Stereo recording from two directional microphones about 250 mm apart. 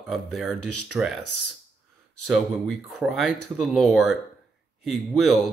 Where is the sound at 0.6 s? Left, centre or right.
Left.